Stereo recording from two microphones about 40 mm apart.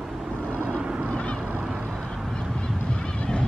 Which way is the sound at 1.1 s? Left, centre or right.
Left.